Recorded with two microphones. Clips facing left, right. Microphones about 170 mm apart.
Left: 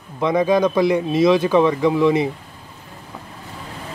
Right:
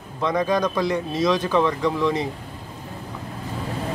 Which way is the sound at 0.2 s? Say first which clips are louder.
Left 5 dB; 10° left (ahead or behind).